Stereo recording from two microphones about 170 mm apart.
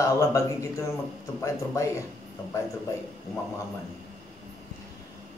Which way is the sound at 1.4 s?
20° left (ahead or behind).